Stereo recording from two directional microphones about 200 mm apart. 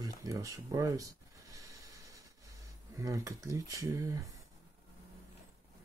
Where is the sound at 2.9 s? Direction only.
15° right (ahead or behind).